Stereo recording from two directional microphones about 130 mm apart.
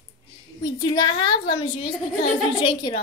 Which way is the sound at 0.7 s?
35° left (ahead or behind).